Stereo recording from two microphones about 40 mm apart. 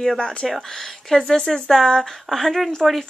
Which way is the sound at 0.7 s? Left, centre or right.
Centre.